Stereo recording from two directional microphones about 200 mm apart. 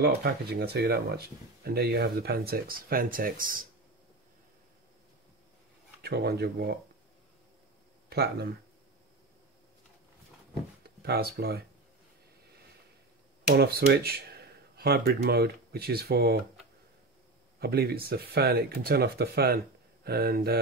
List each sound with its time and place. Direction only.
0.0 s speech: 50° right (ahead or behind)
6.0 s speech: 55° right (ahead or behind)
8.1 s speech: 55° right (ahead or behind)
11.0 s speech: 50° right (ahead or behind)
13.6 s speech: 50° right (ahead or behind)
17.6 s speech: 50° right (ahead or behind)